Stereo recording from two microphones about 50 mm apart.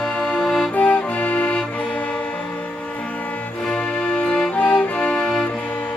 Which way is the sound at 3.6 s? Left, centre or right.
Centre.